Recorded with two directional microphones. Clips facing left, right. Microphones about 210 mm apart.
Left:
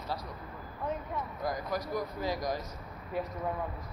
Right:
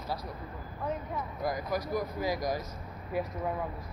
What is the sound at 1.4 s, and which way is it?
A woman's voice, 10° right (ahead or behind).